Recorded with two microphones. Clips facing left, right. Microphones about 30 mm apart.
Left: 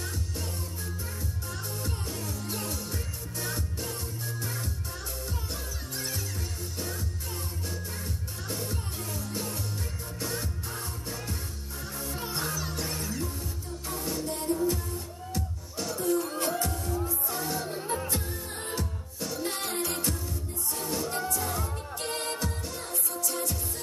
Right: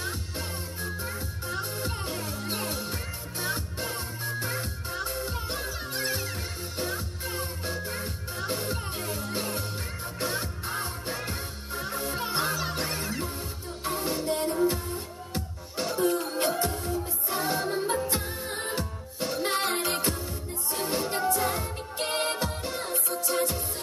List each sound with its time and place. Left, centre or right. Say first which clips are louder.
0.0 s music: right 2 dB; right